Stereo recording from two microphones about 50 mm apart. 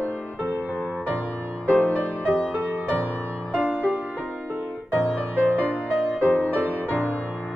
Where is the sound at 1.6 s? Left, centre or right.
Left.